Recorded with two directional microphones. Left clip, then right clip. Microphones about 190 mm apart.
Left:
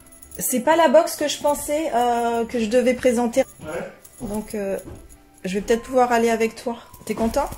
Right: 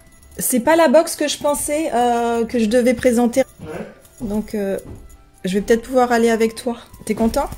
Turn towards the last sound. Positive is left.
turn(degrees=-35)  # may be behind; listen again after turning